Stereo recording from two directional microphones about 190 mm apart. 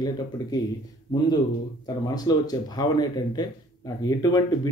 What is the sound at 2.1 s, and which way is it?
Speech, 20° left (ahead or behind).